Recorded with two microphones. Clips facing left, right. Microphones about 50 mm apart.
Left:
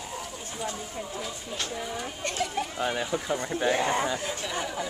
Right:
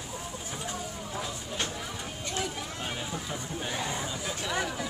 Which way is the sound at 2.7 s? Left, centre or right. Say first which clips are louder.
Left 7 dB; left.